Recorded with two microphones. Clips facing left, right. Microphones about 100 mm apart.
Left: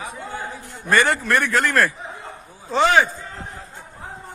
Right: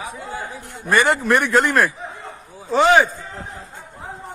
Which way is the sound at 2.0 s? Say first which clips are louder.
Right 1 dB; centre (ahead or behind).